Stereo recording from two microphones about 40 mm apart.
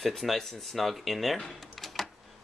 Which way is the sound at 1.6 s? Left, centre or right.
Centre.